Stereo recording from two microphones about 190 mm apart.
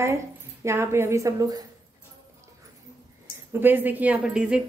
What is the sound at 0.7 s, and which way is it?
Speech, 15° right (ahead or behind).